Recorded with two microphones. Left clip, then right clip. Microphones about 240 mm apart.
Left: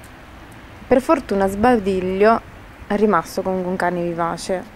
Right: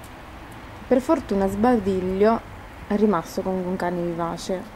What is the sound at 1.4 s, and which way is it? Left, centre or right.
Speech, centre.